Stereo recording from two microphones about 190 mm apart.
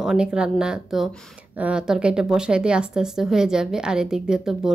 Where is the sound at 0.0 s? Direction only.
5° right (ahead or behind).